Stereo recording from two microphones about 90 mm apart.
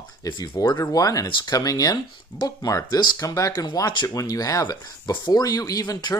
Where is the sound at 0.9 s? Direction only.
40° left (ahead or behind).